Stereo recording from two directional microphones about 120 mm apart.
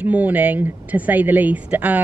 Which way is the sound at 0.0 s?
15° right (ahead or behind).